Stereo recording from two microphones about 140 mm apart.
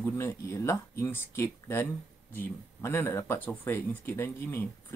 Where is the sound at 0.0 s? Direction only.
20° left (ahead or behind).